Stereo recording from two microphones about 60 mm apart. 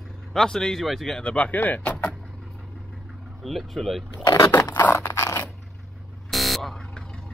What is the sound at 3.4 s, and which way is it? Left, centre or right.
Speech, centre.